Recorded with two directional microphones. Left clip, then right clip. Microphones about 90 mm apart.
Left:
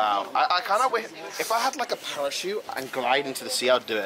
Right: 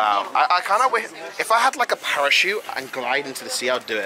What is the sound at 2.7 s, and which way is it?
Speech, 5° right (ahead or behind).